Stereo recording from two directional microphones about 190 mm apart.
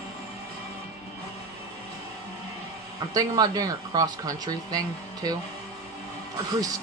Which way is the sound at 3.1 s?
20° right (ahead or behind).